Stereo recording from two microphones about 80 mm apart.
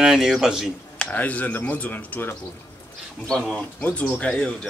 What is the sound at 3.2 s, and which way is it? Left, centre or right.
Speech, centre.